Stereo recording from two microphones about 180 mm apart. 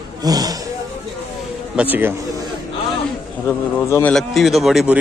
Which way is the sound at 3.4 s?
10° left (ahead or behind).